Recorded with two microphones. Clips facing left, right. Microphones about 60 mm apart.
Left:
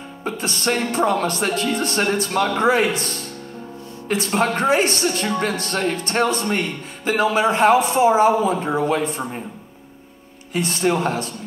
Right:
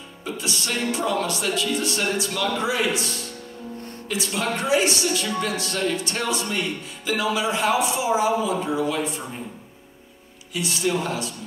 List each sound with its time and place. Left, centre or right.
0.2 s speech: left
10.5 s speech: left